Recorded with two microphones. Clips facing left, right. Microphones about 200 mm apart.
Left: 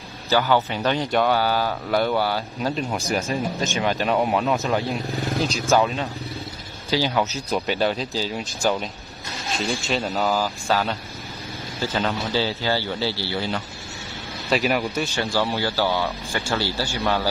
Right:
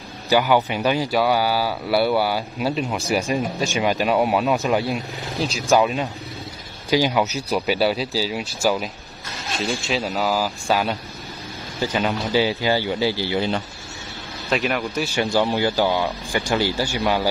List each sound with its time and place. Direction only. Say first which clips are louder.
0.3 s speech: right 2 dB; 15° right (ahead or behind)
14.5 s speech: left 1 dB; centre (ahead or behind)
15.3 s speech: right 4 dB; 20° right (ahead or behind)